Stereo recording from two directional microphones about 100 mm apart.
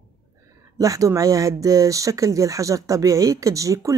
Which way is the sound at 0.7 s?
35° right (ahead or behind).